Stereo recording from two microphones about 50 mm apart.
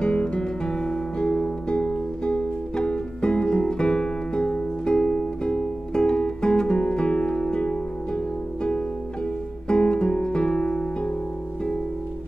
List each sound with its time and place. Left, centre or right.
0.0 s music: left
9.7 s music: centre